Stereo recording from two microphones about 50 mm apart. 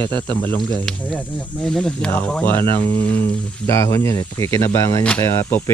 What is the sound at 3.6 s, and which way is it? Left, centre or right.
Speech, left.